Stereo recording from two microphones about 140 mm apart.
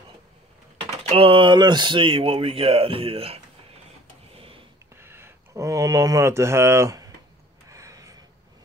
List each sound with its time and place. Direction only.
1.0 s speech: 40° right (ahead or behind)
4.3 s a sound: 40° right (ahead or behind)
5.0 s speech: 15° right (ahead or behind)
7.7 s gasp: 25° right (ahead or behind)